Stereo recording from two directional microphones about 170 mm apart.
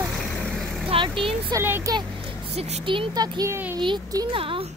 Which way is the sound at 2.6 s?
30° right (ahead or behind).